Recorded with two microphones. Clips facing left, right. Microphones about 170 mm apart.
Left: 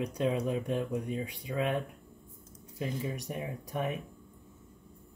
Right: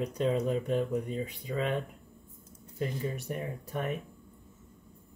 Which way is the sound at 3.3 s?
15° left (ahead or behind).